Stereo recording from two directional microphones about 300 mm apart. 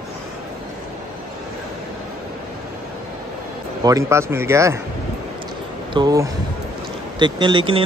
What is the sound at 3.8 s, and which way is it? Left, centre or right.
Speech, centre.